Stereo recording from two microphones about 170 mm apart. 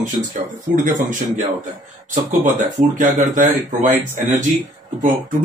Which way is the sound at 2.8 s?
45° right (ahead or behind).